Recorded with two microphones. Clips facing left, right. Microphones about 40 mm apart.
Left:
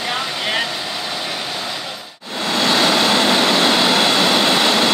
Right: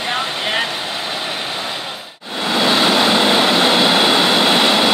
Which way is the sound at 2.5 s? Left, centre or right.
Centre.